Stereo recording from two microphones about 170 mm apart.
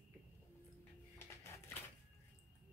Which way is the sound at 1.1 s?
15° left (ahead or behind).